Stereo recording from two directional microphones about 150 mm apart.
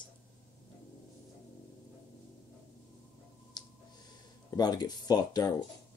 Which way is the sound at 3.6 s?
30° left (ahead or behind).